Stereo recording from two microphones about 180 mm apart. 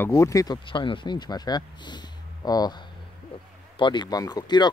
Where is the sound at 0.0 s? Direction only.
15° left (ahead or behind).